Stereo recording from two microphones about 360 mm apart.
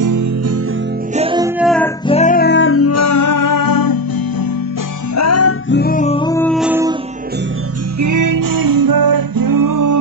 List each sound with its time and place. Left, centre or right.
0.0 s music: right
1.1 s music: centre
2.0 s music: centre; by 4.5 s left
5.1 s music: left
5.7 s music: left; by 7.0 s centre
8.0 s music: right